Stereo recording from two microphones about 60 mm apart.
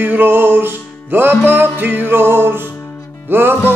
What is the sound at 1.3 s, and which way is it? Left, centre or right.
Music, left.